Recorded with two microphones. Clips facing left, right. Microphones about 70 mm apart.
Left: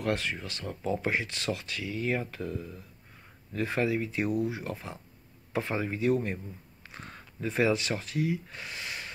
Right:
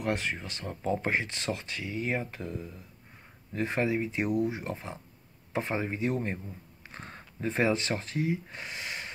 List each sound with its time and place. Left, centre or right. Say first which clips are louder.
0.0 s speech: even; right